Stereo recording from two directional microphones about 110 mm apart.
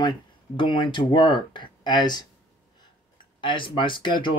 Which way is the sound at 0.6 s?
45° left (ahead or behind).